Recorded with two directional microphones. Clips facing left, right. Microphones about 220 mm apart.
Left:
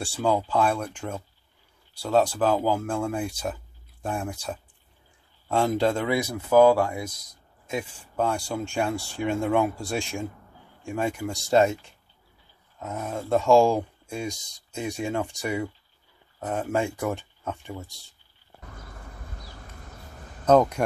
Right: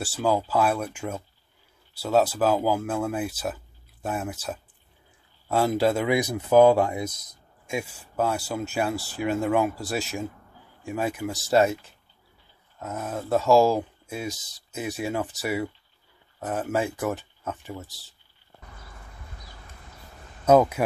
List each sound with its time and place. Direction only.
0.0 s speech: 5° right (ahead or behind); by 7.2 s 20° right (ahead or behind)
7.6 s speech: 10° right (ahead or behind)
20.4 s speech: 5° right (ahead or behind)